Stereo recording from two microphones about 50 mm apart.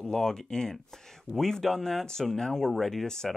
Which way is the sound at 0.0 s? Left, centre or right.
Centre.